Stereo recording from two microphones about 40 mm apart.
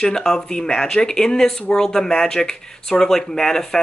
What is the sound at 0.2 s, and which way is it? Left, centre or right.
Speech, centre.